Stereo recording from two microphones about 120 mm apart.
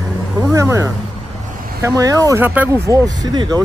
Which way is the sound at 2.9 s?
35° right (ahead or behind).